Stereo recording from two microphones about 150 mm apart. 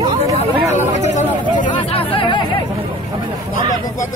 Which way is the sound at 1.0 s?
55° left (ahead or behind).